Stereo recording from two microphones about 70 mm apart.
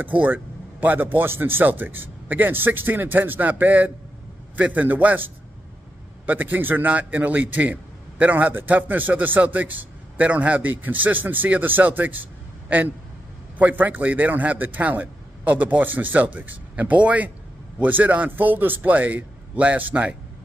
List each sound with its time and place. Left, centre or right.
0.0 s a man's voice: right